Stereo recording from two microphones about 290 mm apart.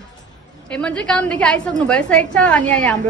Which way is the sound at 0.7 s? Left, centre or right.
Centre.